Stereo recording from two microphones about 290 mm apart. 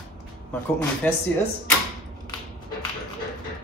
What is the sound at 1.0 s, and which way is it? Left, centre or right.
Speech, centre.